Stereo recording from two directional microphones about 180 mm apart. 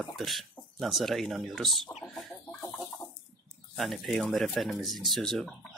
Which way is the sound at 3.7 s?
Centre (ahead or behind).